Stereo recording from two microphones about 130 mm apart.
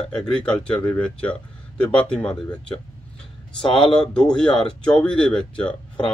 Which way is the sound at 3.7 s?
40° left (ahead or behind).